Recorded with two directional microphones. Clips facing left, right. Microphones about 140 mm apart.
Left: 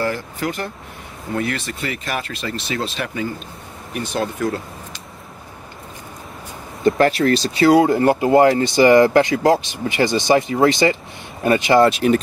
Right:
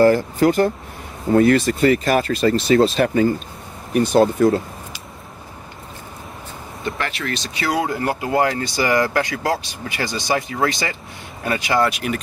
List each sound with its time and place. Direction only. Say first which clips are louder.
0.0 s speech: right 9 dB; 40° right (ahead or behind)
6.8 s speech: left 11 dB; 40° left (ahead or behind)